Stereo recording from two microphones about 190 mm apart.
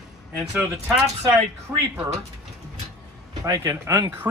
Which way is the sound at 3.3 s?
20° right (ahead or behind).